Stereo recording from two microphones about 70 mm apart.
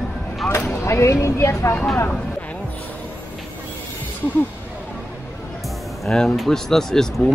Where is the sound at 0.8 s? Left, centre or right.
Left.